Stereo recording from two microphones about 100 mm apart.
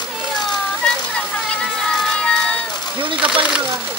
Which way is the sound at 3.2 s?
10° right (ahead or behind).